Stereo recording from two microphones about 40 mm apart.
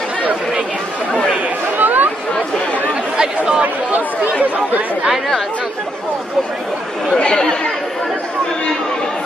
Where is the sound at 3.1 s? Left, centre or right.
Centre.